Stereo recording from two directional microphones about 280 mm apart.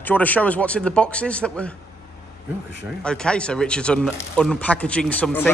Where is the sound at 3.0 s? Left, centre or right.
Centre.